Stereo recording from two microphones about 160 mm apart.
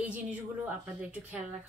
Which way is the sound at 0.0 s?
10° right (ahead or behind).